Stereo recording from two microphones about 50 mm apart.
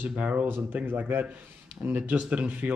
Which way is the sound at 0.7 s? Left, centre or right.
Right.